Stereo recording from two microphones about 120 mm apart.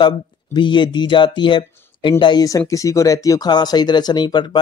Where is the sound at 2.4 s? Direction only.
30° left (ahead or behind).